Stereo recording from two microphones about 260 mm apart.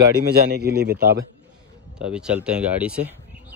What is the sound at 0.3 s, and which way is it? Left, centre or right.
Speech, right.